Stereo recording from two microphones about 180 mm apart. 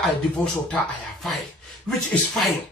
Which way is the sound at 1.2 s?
Centre (ahead or behind).